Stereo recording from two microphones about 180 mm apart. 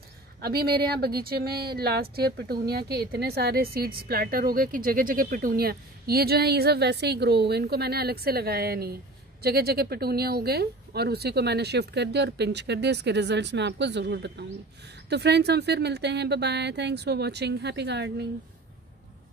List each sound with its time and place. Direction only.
0.4 s speech: 60° right (ahead or behind)